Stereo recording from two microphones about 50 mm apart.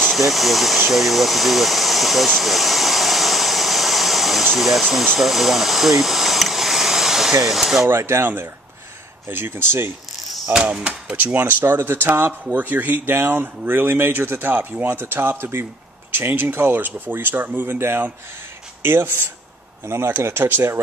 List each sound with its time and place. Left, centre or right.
0.1 s a sound: centre
4.5 s speech: centre
7.9 s speech: right
9.3 s speech: right
10.5 s speech: right
11.2 s speech: right
11.6 s speech: right
12.4 s speech: right